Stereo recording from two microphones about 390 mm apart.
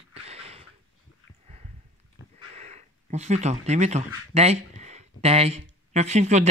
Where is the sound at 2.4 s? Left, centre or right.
Centre.